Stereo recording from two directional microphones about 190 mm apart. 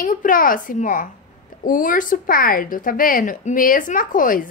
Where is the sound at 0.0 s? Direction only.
45° left (ahead or behind).